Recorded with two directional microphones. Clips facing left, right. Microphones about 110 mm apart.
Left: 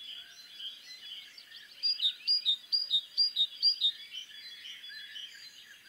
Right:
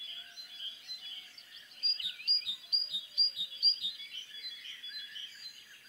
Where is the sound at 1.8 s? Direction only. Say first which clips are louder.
Left 3 dB; 40° right (ahead or behind).